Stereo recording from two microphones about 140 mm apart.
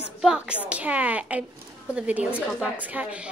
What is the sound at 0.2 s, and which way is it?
A woman's voice, 5° right (ahead or behind).